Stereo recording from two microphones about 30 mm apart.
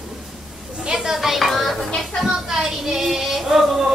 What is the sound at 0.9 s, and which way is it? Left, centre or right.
Speech, centre.